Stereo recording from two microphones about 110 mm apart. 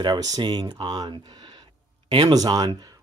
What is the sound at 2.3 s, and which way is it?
Speech, 35° right (ahead or behind).